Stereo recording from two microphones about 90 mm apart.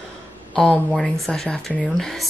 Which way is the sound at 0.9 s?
5° left (ahead or behind).